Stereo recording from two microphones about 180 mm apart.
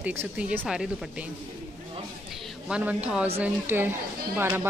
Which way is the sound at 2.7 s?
10° right (ahead or behind).